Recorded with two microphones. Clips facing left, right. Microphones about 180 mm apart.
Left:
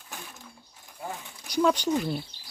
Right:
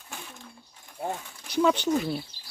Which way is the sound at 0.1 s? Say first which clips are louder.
Right 1 dB; 5° left (ahead or behind).